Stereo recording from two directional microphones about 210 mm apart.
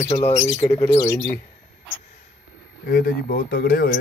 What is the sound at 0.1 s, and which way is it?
Speech, 35° left (ahead or behind).